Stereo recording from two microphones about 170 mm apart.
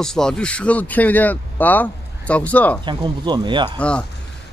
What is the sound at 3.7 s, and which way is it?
Speech, 5° left (ahead or behind).